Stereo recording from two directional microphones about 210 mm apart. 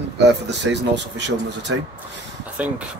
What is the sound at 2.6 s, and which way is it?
Speech, 5° right (ahead or behind).